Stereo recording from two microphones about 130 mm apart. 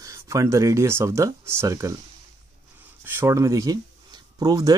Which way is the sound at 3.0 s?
20° right (ahead or behind).